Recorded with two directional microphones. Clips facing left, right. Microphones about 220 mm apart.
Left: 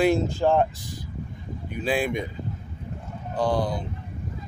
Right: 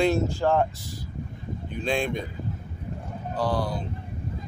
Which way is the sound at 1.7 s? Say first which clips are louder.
Left 2 dB; 5° left (ahead or behind).